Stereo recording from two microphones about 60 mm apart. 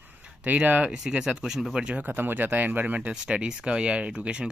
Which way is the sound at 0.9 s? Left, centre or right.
Centre.